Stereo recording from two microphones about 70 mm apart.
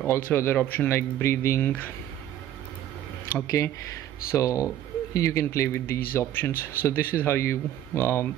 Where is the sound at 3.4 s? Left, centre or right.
Left.